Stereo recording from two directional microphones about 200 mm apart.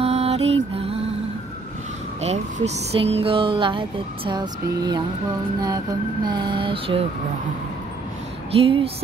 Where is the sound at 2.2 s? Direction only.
35° right (ahead or behind).